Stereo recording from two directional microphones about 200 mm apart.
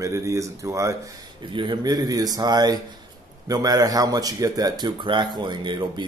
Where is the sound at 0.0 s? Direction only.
15° right (ahead or behind).